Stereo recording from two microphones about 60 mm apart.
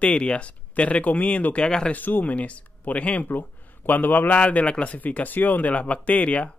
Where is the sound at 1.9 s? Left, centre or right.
Left.